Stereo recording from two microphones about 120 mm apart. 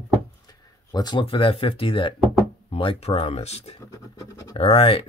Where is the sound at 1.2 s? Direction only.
50° left (ahead or behind).